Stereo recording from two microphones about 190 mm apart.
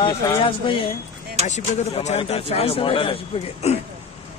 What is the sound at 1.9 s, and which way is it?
A man's voice, 30° left (ahead or behind).